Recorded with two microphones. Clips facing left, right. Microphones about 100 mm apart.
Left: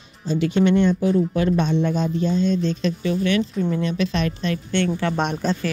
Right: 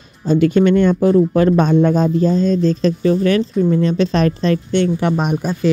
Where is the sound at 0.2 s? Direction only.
50° right (ahead or behind).